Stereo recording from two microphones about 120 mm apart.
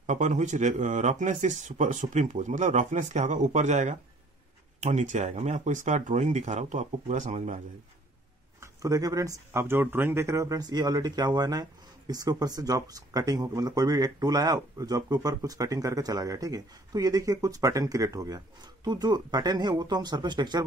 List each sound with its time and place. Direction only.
0.0 s speech: 80° right
8.5 s speech: 30° right (ahead or behind)